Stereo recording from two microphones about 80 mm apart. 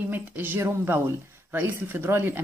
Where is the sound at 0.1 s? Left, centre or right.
Right.